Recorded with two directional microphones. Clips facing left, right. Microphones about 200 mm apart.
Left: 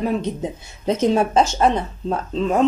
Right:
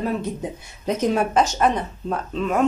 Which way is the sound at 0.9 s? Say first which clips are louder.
Left 3 dB; 25° left (ahead or behind).